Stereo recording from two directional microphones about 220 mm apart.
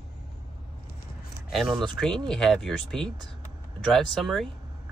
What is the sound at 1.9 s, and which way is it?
Speech, 5° left (ahead or behind).